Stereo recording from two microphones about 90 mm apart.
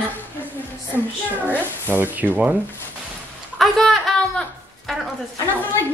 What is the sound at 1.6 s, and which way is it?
Speech, 25° right (ahead or behind).